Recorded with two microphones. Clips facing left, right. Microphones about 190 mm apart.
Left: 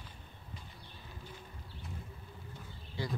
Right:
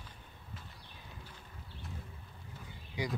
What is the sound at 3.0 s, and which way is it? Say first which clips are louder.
Speech: right 2 dB; 15° right (ahead or behind).